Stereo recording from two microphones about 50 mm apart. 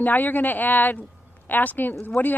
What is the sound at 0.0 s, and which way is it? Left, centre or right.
Speech, left.